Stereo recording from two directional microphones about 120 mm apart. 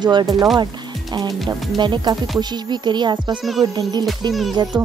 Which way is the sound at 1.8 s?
40° right (ahead or behind).